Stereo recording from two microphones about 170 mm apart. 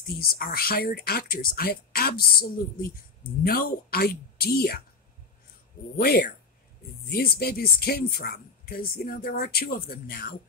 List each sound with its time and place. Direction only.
0.3 s speech: 60° left (ahead or behind)
5.9 s speech: 60° left (ahead or behind)